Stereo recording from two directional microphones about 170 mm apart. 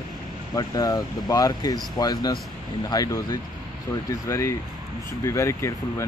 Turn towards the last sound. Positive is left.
turn(degrees=15)  # may be behind; listen again after turning